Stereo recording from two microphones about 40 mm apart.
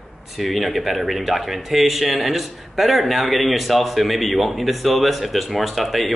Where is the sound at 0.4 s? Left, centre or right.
Centre.